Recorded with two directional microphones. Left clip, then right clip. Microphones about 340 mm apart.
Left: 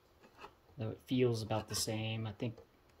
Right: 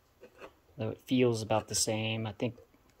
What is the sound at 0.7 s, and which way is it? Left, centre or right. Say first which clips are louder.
Speech: right 6 dB; centre.